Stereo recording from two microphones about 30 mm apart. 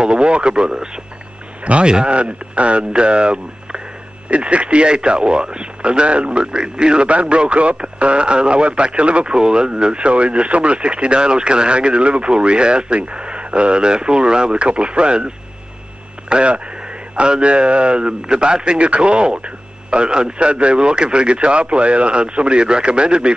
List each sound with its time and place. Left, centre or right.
0.0 s speech: right
1.6 s a man's voice: right
1.9 s speech: right
2.1 s speech: right
7.1 s speech: right
9.3 s speech: right